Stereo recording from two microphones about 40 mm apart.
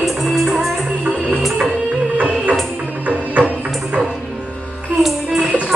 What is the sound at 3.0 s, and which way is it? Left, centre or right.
Music, right.